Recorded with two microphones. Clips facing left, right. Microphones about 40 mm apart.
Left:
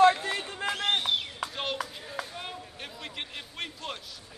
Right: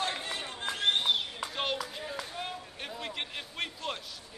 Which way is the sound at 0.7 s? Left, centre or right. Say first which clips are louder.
Left 1 dB; left.